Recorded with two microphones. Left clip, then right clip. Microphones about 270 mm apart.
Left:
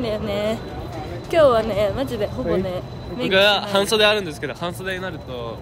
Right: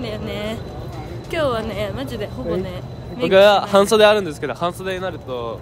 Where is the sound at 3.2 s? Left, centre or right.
Right.